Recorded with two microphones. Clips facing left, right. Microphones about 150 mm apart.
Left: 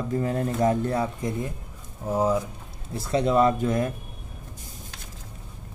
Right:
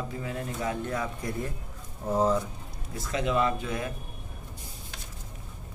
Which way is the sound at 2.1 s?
10° left (ahead or behind).